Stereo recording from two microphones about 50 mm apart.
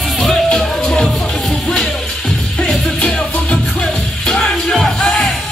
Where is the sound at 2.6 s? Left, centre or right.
Left.